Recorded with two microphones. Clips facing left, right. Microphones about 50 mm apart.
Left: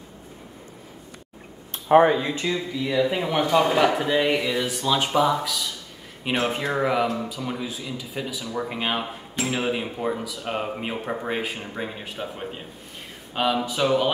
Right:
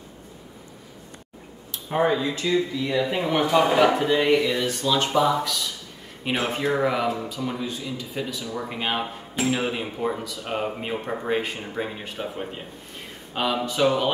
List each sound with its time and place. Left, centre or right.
1.7 s a sound: left
2.0 s speech: left
2.5 s speech: centre